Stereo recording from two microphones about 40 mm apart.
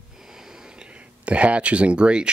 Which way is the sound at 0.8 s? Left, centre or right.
Right.